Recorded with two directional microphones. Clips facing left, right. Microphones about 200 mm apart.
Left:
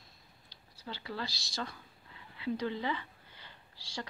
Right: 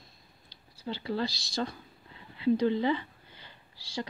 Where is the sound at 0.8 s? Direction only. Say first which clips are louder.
Right 8 dB; 25° right (ahead or behind).